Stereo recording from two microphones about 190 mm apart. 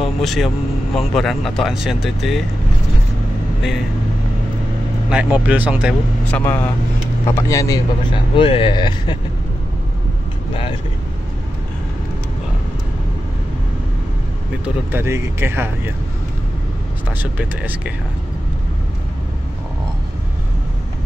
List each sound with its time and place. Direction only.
0.0 s vehicle: centre (ahead or behind)
0.9 s speech: centre (ahead or behind)
5.1 s speech: 5° right (ahead or behind)
6.3 s speech: 10° left (ahead or behind)
8.4 s speech: 30° left (ahead or behind)
14.9 s speech: 15° right (ahead or behind)
17.2 s speech: 10° right (ahead or behind)